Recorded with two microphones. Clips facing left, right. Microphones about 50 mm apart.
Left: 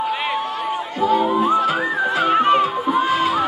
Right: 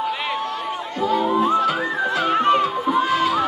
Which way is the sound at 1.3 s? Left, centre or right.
Centre.